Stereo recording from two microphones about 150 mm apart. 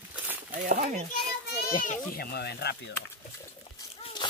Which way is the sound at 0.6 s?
65° right (ahead or behind).